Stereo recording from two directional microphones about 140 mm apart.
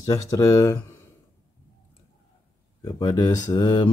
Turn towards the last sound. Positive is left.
turn(degrees=30)  # may be behind; listen again after turning